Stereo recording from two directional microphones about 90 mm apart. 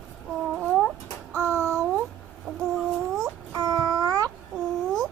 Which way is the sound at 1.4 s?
30° right (ahead or behind).